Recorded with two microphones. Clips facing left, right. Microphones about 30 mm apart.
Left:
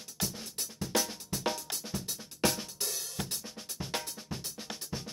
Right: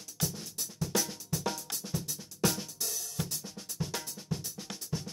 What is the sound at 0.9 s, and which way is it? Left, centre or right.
Drum, left.